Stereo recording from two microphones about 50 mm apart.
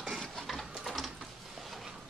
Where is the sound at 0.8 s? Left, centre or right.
Centre.